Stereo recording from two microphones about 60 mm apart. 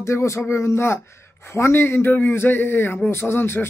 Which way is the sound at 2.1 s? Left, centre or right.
Left.